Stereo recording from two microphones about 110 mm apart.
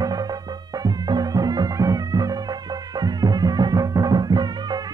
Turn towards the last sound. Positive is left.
turn(degrees=-40)  # may be behind; listen again after turning